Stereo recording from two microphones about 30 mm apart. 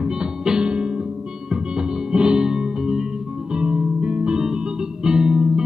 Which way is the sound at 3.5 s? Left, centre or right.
Right.